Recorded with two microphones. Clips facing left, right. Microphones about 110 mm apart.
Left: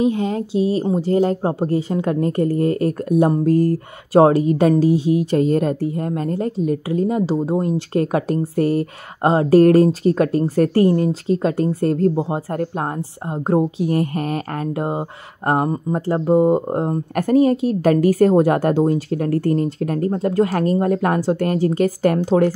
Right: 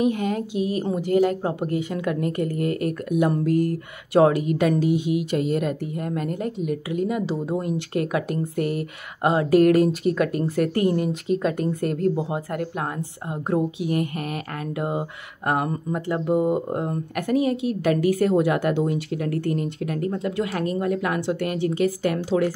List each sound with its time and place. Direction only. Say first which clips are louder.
0.0 s speech: left 4 dB; 25° left (ahead or behind); by 22.5 s 40° left (ahead or behind)